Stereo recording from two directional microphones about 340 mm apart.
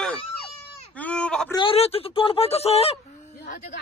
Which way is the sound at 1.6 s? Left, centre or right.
Centre.